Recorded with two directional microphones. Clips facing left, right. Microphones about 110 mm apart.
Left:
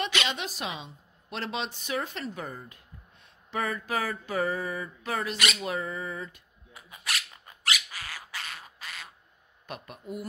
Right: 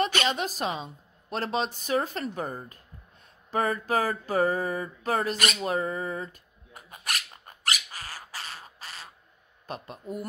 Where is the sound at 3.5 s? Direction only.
40° right (ahead or behind).